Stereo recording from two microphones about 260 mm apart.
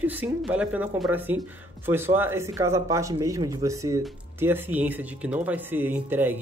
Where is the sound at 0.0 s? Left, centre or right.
Centre.